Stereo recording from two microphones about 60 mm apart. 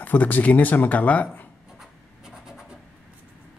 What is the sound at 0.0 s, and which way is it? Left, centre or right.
Speech, left.